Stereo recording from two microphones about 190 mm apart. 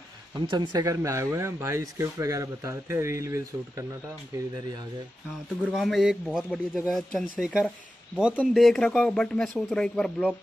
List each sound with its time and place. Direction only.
0.5 s speech: 20° right (ahead or behind)
5.6 s speech: centre (ahead or behind)